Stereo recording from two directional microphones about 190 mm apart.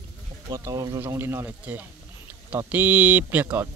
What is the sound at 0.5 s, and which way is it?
Speech, 15° right (ahead or behind).